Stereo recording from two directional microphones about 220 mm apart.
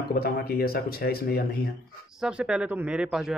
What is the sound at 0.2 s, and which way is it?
Speech, 45° left (ahead or behind).